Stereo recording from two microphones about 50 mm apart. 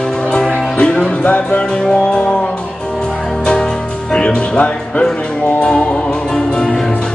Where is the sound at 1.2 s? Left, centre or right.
Left.